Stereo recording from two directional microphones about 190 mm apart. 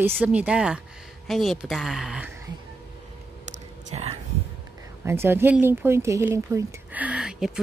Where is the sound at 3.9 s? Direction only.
35° right (ahead or behind).